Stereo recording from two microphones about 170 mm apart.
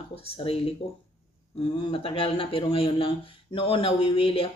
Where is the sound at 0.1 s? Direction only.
35° left (ahead or behind).